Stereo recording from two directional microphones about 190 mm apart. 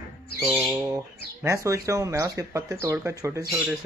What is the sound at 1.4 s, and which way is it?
Speech, 15° right (ahead or behind).